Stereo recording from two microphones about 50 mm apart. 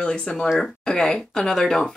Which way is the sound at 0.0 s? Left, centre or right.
Centre.